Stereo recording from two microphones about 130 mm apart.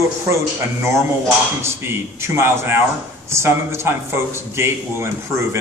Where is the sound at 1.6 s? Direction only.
20° right (ahead or behind).